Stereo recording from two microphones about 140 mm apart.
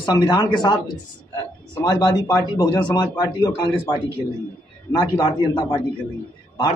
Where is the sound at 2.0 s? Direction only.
30° left (ahead or behind).